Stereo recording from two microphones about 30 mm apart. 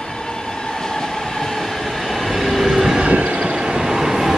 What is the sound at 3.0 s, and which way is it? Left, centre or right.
Train, right.